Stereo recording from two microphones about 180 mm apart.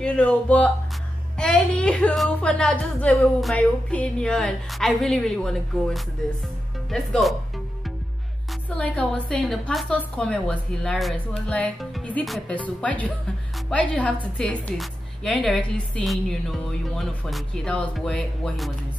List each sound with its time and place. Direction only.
0.0 s a woman's voice: 5° left (ahead or behind)
8.6 s a woman's voice: 5° left (ahead or behind)